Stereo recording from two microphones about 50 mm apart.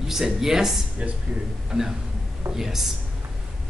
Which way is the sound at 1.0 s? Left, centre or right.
Right.